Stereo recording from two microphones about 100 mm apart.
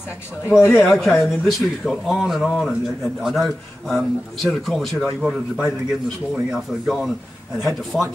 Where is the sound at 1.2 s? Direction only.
Centre (ahead or behind).